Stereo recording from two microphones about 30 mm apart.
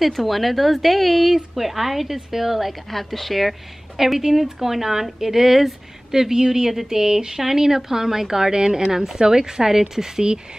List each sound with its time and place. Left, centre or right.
0.0 s a woman's voice: centre
2.9 s a woman's voice: centre
6.3 s a woman's voice: centre